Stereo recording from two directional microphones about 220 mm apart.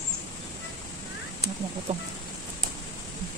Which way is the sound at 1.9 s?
30° right (ahead or behind).